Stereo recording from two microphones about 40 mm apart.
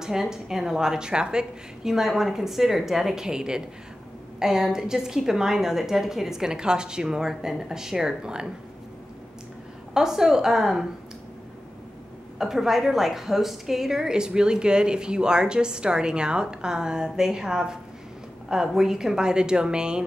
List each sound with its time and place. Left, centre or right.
0.0 s a woman's voice: centre
1.9 s a woman's voice: centre
9.9 s a woman's voice: centre
12.4 s a woman's voice: centre